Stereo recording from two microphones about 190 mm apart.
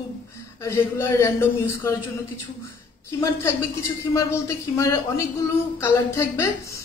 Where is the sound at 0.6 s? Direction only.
15° left (ahead or behind).